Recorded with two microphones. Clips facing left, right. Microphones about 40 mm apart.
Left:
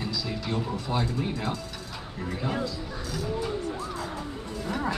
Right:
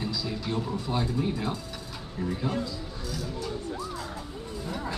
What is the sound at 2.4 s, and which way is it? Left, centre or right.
Speech, left.